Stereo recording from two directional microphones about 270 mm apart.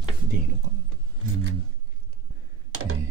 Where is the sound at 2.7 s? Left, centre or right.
Right.